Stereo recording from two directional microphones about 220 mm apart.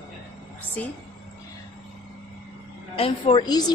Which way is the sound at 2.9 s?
25° left (ahead or behind).